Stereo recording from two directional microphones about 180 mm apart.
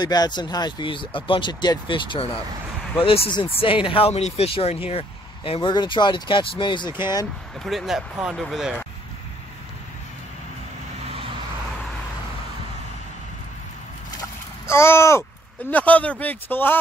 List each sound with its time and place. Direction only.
0.0 s speech: 20° left (ahead or behind)
7.6 s speech: centre (ahead or behind)
14.7 s a sound: 15° left (ahead or behind)
15.7 s a man's voice: 10° left (ahead or behind)